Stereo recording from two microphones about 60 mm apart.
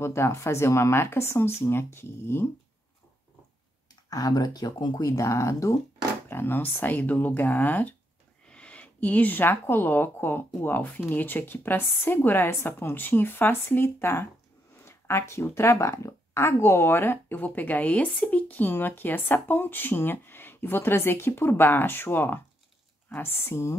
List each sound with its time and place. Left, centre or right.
0.0 s speech: left
4.1 s speech: left
6.2 s speech: left
8.5 s speech: centre; by 14.3 s left
14.9 s a sound: left
15.4 s speech: left